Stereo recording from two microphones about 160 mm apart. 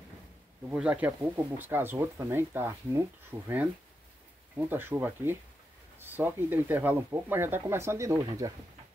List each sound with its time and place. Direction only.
0.7 s speech: 10° right (ahead or behind); by 8.5 s 25° right (ahead or behind)